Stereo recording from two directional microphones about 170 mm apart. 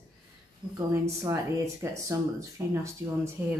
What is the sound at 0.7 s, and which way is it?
A woman's voice, 20° right (ahead or behind).